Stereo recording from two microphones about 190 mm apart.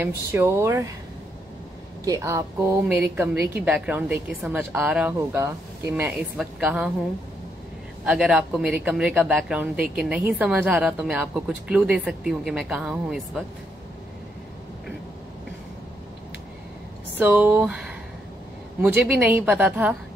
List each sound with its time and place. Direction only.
0.3 s a woman's voice: 15° right (ahead or behind)
2.0 s a woman's voice: 15° right (ahead or behind)
8.0 s speech: 5° right (ahead or behind)
17.2 s a woman's voice: 10° right (ahead or behind)